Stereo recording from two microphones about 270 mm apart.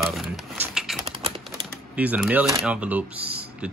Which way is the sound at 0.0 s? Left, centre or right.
Centre.